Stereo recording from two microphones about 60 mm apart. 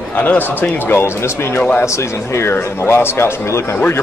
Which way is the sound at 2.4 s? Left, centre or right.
Left.